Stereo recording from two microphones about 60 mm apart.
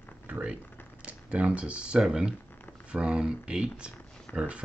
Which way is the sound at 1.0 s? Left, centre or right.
Right.